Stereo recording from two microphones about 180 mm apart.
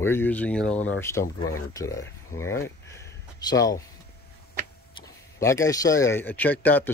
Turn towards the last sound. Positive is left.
turn(degrees=10)  # may be behind; listen again after turning